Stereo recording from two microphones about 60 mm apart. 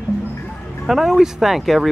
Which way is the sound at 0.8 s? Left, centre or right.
Centre.